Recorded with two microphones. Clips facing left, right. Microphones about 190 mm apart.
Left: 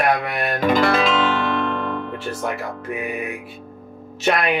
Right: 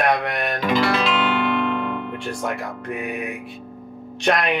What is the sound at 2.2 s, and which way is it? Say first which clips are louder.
Speech: left 1 dB; centre (ahead or behind).